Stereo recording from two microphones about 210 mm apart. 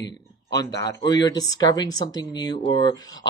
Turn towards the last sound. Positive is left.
turn(degrees=20)  # may be behind; listen again after turning